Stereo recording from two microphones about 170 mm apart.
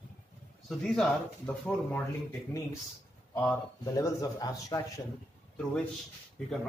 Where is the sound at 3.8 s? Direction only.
20° left (ahead or behind).